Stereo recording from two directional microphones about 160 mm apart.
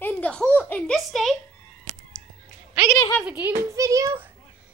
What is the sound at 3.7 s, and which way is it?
Speech, 20° right (ahead or behind).